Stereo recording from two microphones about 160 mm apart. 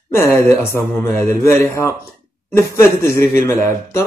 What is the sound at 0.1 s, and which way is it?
Speech, 15° left (ahead or behind).